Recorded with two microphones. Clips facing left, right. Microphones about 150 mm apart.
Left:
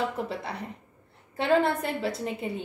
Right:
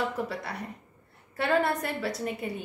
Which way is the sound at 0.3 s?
25° left (ahead or behind).